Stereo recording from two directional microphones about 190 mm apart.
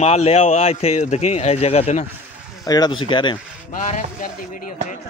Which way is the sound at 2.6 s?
20° left (ahead or behind).